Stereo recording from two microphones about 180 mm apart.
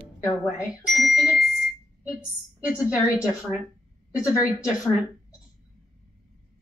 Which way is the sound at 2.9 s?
5° right (ahead or behind).